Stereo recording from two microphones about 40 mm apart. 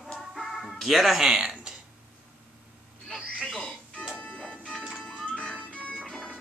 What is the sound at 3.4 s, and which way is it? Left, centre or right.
Music, centre.